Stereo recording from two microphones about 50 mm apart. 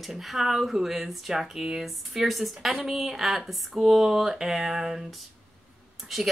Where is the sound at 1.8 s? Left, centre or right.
Centre.